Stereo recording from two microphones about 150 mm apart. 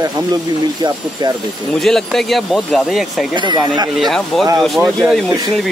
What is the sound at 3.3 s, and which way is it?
Speech, 30° right (ahead or behind).